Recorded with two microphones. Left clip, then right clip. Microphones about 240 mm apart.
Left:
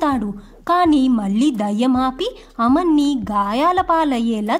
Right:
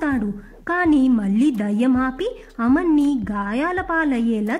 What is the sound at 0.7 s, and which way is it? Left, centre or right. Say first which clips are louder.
A woman's voice: left 3 dB; centre.